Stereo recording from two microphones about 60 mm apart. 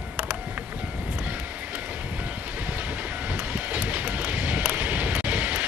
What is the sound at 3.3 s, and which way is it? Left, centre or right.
Vehicle, right.